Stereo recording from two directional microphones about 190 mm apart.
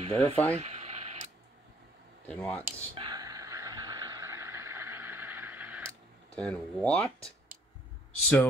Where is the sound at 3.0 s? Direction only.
20° right (ahead or behind).